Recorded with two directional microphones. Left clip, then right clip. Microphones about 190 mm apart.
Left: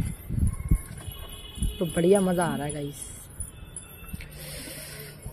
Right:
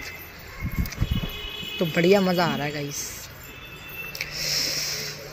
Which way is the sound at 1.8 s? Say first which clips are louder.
Right 2 dB; centre (ahead or behind).